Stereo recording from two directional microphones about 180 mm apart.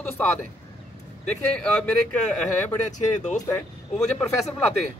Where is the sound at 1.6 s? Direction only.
5° left (ahead or behind).